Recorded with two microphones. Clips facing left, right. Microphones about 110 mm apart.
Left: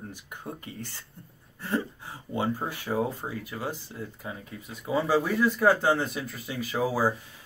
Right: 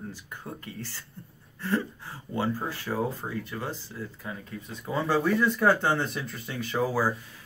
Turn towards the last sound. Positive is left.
turn(degrees=10)  # may be behind; listen again after turning